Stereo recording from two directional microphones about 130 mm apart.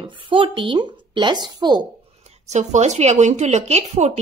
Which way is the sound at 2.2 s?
55° right (ahead or behind).